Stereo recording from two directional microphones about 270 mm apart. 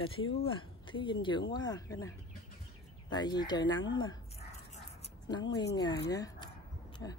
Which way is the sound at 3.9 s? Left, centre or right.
Centre.